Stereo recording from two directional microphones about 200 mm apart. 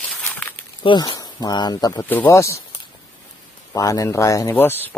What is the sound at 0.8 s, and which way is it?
Speech, 25° left (ahead or behind).